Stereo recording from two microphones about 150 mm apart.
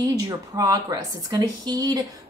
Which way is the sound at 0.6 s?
25° right (ahead or behind).